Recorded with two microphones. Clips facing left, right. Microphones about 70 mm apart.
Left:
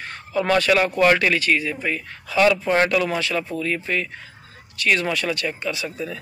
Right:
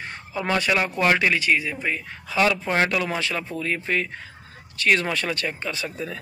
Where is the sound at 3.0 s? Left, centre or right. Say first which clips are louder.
Left 3 dB; right.